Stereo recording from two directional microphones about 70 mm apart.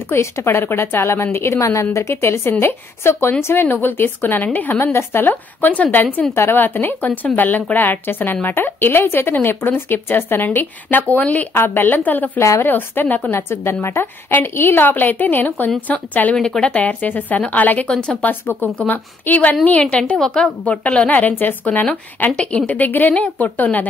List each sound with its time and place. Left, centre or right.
0.1 s a woman's voice: left
12.4 s a woman's voice: left
12.6 s a woman's voice: left
16.3 s a woman's voice: centre
18.8 s a woman's voice: left
22.4 s speech: centre
22.7 s a woman's voice: left